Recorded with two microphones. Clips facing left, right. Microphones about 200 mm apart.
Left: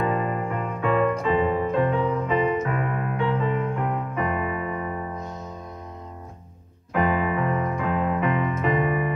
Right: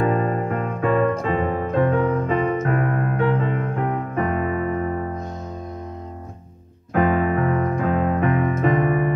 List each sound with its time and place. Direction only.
0.0 s music: 40° right (ahead or behind)
6.9 s piano: 50° right (ahead or behind)